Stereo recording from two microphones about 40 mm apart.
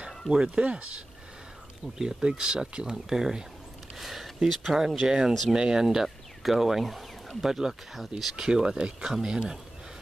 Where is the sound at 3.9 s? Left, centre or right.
Centre.